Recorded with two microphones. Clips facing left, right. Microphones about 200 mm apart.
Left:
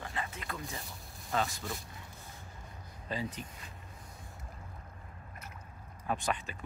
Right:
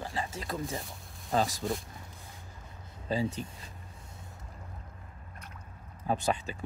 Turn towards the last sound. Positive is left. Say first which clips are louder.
# right 4 dB
turn(degrees=-30)  # may be behind; listen again after turning